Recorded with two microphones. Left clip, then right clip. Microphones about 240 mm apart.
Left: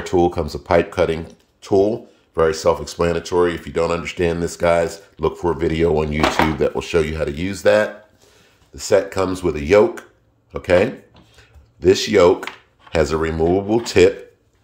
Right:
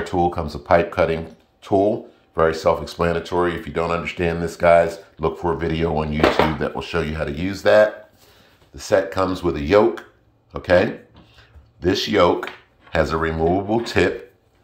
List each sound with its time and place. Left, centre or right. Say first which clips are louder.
0.0 s speech: left 3 dB; left
10.5 s a sound: left 1 dB; left
12.9 s speech: left 2 dB; left